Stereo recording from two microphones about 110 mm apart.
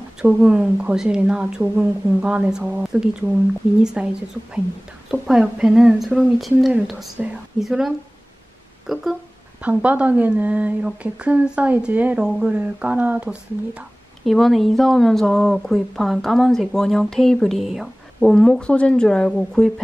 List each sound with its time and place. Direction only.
0.2 s speech: 10° right (ahead or behind)
14.2 s speech: centre (ahead or behind)